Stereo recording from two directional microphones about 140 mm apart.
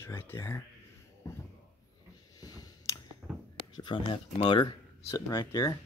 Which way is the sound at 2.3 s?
25° left (ahead or behind).